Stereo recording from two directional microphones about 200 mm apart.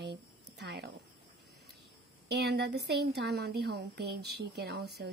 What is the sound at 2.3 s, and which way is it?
A woman's voice, 55° right (ahead or behind).